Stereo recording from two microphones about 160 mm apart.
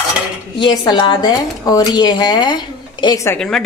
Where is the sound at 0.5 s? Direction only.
30° left (ahead or behind).